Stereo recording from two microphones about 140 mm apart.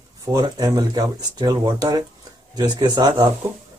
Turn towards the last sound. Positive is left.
turn(degrees=-30)  # may be behind; listen again after turning